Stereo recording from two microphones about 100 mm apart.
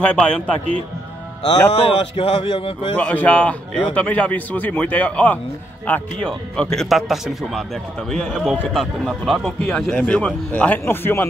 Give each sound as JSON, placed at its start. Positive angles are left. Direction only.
{"t": 0.0, "sound": "speech", "side_deg": 10}
{"t": 1.4, "sound": "a man's voice", "side_deg": 65}
{"t": 3.0, "sound": "speech", "side_deg": 15}